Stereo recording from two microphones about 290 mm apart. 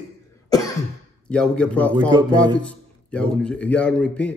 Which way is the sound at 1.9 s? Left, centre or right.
Centre.